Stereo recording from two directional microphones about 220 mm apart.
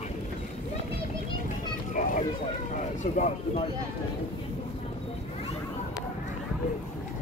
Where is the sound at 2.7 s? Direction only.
35° left (ahead or behind).